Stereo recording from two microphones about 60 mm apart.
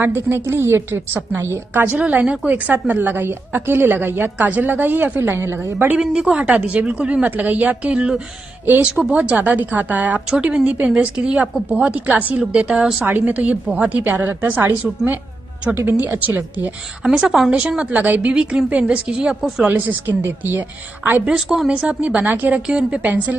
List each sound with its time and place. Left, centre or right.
0.0 s a woman's voice: right
2.0 s a woman's voice: right
5.9 s a woman's voice: centre
7.9 s a woman's voice: centre; by 14.7 s right
15.7 s a woman's voice: right
16.2 s a woman's voice: right
17.0 s a woman's voice: centre
17.5 s a woman's voice: centre
18.3 s speech: centre
19.7 s a woman's voice: right
21.3 s a woman's voice: centre
21.6 s a woman's voice: right